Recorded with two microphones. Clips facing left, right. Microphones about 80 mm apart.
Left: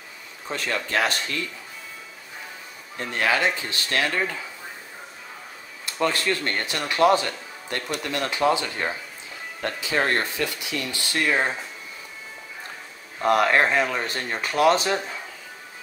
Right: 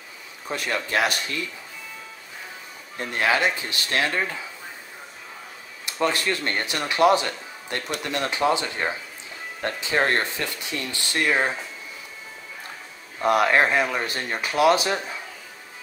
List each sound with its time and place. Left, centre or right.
0.5 s speech: centre
3.0 s speech: centre
5.9 s speech: centre
11.2 s speech: centre
13.2 s speech: centre